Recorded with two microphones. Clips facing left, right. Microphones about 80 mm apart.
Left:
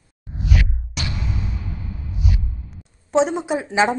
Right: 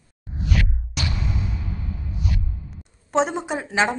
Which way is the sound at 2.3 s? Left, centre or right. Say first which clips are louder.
Left 1 dB; centre.